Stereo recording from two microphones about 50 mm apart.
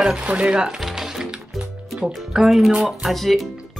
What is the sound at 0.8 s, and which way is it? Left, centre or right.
Music, centre.